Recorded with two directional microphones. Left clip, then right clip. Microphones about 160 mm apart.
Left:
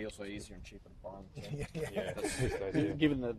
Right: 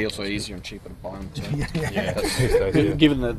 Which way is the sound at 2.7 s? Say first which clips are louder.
Right 13 dB; 50° left (ahead or behind).